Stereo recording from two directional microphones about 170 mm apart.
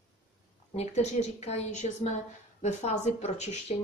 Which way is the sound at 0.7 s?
40° left (ahead or behind).